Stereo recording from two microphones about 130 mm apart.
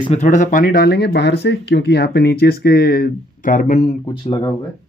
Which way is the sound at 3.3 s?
80° left.